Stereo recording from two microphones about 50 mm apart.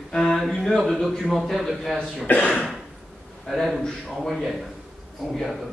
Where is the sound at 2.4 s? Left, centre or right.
Left.